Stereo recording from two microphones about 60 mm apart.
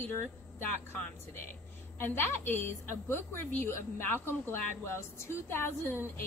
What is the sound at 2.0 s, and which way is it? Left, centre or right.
A woman's voice, left.